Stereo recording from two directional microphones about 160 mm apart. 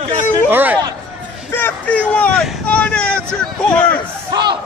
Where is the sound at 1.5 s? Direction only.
10° left (ahead or behind).